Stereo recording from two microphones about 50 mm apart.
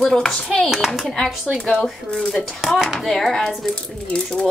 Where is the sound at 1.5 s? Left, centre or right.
Centre.